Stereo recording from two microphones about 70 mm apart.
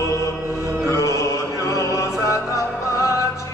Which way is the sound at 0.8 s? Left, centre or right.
Left.